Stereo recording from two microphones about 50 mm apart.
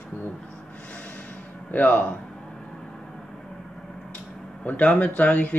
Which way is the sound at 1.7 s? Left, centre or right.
Left.